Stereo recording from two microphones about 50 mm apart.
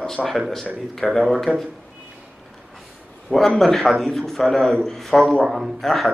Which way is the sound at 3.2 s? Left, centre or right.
Centre.